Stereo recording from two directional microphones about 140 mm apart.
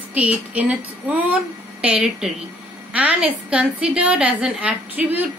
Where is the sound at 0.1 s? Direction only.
10° right (ahead or behind).